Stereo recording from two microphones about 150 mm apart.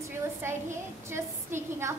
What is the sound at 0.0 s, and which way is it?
A woman's voice, 15° right (ahead or behind).